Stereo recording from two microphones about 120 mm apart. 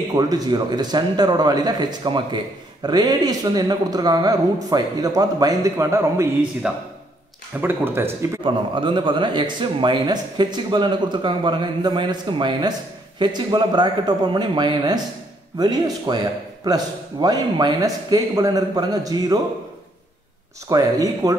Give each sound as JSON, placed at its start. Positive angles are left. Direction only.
{"t": 0.1, "sound": "speech", "side_deg": -30}
{"t": 6.6, "sound": "speech", "side_deg": -10}
{"t": 8.5, "sound": "speech", "side_deg": -40}
{"t": 20.6, "sound": "speech", "side_deg": -30}